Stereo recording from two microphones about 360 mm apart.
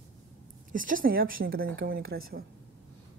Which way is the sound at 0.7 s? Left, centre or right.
Right.